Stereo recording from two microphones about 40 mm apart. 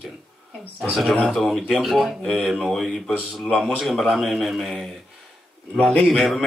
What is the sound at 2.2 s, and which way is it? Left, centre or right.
A man's voice, centre.